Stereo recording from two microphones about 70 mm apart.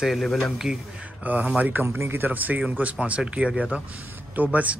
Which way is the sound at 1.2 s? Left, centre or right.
Right.